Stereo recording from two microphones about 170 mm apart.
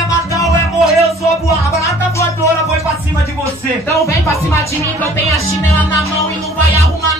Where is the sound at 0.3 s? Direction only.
20° left (ahead or behind).